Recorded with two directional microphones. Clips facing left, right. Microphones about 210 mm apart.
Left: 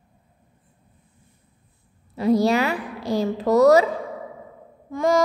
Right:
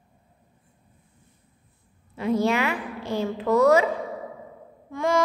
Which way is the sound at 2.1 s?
35° left (ahead or behind).